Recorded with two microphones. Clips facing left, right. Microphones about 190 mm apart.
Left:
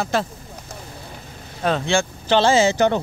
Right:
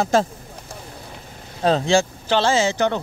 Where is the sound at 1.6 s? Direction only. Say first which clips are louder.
Right 3 dB; 35° right (ahead or behind).